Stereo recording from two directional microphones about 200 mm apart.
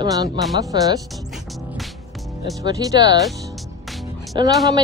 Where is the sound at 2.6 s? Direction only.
20° right (ahead or behind).